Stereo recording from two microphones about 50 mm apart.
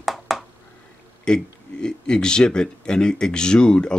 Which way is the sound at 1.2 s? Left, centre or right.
Centre.